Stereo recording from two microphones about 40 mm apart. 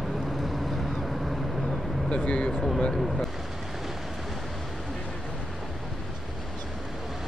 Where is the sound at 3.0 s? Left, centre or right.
Centre.